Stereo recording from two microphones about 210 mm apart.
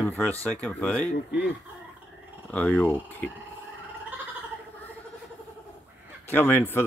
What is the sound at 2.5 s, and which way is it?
Speech, 5° left (ahead or behind).